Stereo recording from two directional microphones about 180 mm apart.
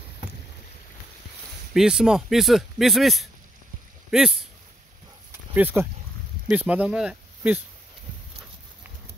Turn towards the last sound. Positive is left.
turn(degrees=-5)  # may be behind; listen again after turning